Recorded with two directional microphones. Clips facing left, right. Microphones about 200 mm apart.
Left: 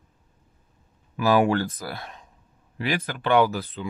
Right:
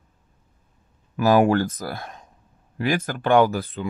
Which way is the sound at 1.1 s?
45° right (ahead or behind).